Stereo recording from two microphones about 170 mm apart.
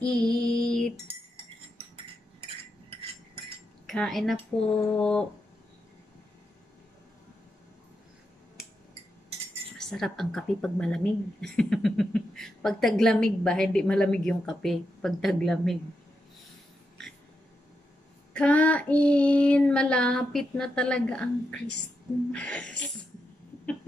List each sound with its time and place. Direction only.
0.0 s female singing: 5° left (ahead or behind)
3.8 s a woman's voice: 5° left (ahead or behind)
9.8 s a woman's voice: 5° left (ahead or behind)
18.3 s child singing: 10° left (ahead or behind)